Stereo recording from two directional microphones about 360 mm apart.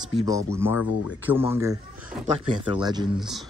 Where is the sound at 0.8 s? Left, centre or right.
Left.